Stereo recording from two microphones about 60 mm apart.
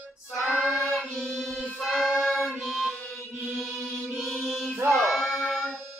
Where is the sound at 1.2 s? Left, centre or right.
Centre.